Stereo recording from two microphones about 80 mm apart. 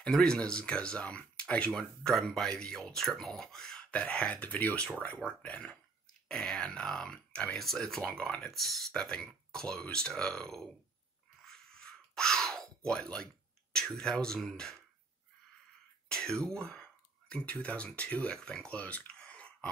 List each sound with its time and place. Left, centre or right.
0.0 s speech: centre
11.4 s a sound: centre
13.7 s speech: centre
16.1 s speech: centre